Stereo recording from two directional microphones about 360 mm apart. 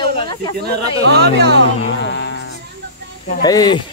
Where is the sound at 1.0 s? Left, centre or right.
Right.